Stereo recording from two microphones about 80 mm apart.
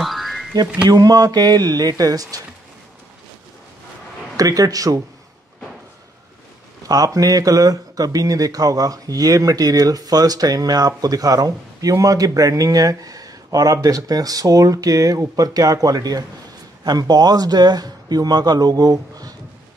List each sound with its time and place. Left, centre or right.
0.0 s a sound: centre
0.8 s speech: right
4.4 s speech: right
6.9 s speech: right